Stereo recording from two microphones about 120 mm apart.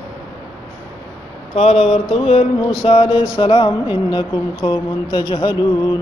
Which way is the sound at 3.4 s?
45° left (ahead or behind).